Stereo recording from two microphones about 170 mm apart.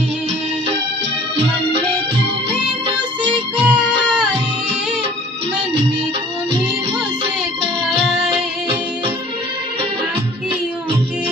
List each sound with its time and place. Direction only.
1.3 s music: 35° right (ahead or behind)
3.5 s music: 5° right (ahead or behind)
8.0 s music: centre (ahead or behind)